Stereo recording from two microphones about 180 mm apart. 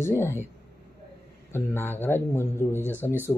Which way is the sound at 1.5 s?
10° left (ahead or behind).